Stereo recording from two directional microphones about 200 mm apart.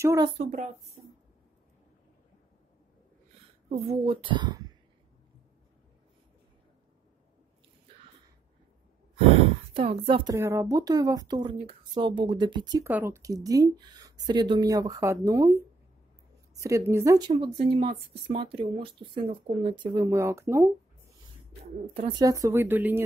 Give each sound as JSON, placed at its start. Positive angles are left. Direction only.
{"t": 0.0, "sound": "speech", "side_deg": -15}
{"t": 0.4, "sound": "speech", "side_deg": -35}
{"t": 3.6, "sound": "speech", "side_deg": -30}
{"t": 9.8, "sound": "speech", "side_deg": -25}
{"t": 10.3, "sound": "speech", "side_deg": -15}
{"t": 21.9, "sound": "speech", "side_deg": -20}